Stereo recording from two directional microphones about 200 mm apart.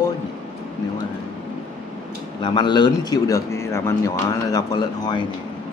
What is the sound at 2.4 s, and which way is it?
Speech, 20° left (ahead or behind).